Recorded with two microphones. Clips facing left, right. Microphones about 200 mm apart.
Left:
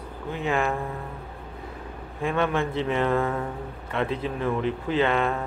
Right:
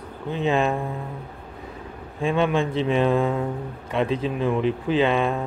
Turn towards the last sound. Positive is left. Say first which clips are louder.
# right 2 dB
turn(degrees=-15)  # may be behind; listen again after turning